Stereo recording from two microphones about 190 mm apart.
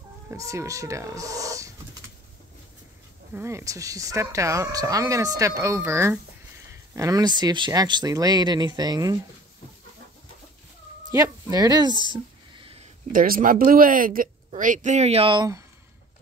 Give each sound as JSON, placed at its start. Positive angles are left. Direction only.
{"t": 0.3, "sound": "speech", "side_deg": -15}
{"t": 3.3, "sound": "speech", "side_deg": -15}
{"t": 11.1, "sound": "speech", "side_deg": -15}
{"t": 12.1, "sound": "a sound", "side_deg": -30}
{"t": 13.1, "sound": "speech", "side_deg": -45}